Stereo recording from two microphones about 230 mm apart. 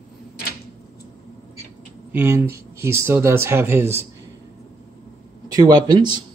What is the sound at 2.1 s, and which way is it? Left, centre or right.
Speech, centre.